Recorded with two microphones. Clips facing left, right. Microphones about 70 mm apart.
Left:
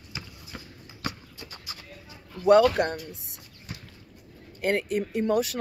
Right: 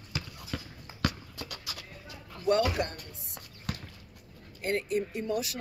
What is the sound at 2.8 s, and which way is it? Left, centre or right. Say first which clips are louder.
Speech: left 7 dB; left.